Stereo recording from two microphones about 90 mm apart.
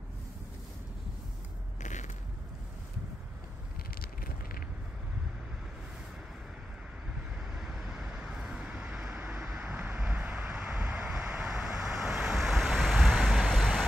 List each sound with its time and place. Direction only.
7.5 s vehicle: 5° right (ahead or behind)